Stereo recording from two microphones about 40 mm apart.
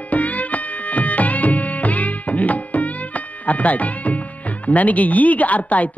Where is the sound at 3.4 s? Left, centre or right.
Left.